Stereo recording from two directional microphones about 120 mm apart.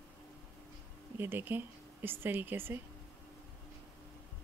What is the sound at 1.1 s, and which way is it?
Speech, 20° right (ahead or behind).